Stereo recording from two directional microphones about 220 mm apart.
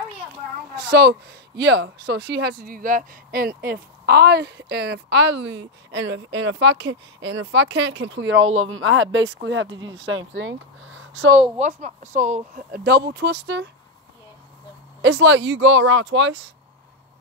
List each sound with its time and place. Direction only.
0.8 s speech: 50° right (ahead or behind)
9.7 s speech: 20° right (ahead or behind)
9.9 s speech: 60° right (ahead or behind)
11.4 s speech: 30° right (ahead or behind); by 13.7 s 50° right (ahead or behind)
15.0 s speech: 55° right (ahead or behind)